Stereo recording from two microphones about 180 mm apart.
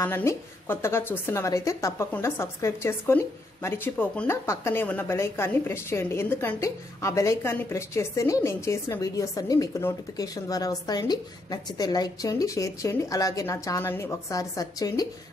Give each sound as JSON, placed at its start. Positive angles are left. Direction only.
{"t": 0.0, "sound": "a woman's voice", "side_deg": 15}